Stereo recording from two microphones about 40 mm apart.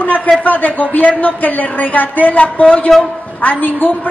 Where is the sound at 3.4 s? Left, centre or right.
Left.